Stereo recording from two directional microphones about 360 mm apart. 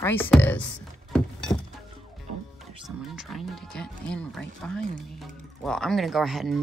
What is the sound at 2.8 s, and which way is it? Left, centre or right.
Speech, centre.